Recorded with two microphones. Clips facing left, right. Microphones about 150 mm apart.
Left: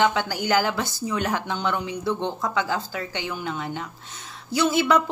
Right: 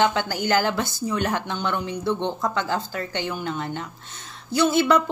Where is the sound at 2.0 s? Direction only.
20° right (ahead or behind).